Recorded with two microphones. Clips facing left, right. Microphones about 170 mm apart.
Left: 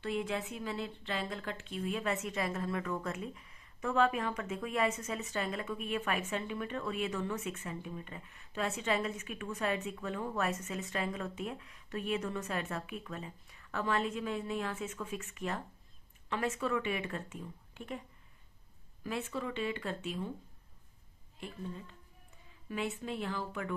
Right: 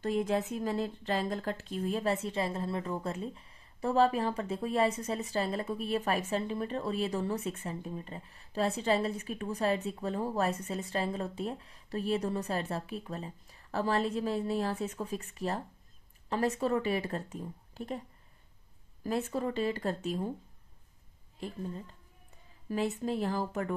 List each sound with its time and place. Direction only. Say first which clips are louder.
0.0 s a woman's voice: right 5 dB; 40° right (ahead or behind)
19.0 s a woman's voice: right 5 dB; 40° right (ahead or behind)
21.4 s a woman's voice: right 4 dB; 40° right (ahead or behind)